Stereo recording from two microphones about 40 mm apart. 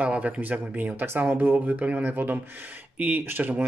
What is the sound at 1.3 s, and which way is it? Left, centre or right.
Speech, right.